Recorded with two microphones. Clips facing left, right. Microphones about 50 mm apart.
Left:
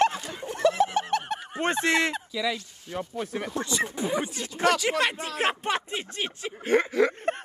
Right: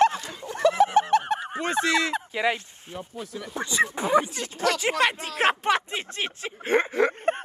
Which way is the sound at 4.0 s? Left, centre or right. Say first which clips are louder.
Right 6 dB; right.